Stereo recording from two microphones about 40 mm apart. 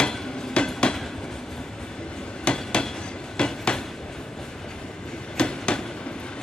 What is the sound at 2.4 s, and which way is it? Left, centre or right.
Train, left.